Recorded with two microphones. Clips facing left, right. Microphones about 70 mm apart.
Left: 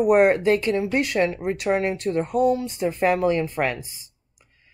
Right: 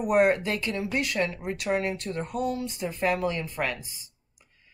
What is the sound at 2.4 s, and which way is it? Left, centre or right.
Speech, left.